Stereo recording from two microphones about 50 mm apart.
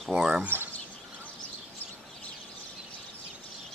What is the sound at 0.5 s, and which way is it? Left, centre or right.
Speech, right.